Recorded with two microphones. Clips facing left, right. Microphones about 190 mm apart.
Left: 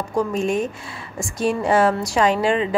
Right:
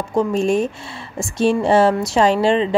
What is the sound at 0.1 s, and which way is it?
A woman's voice, 25° right (ahead or behind).